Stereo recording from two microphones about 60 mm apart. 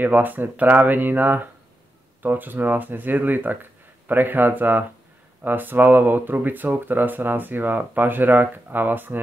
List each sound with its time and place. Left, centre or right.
0.0 s speech: right